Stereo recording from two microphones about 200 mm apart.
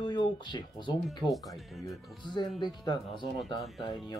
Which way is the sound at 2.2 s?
20° left (ahead or behind).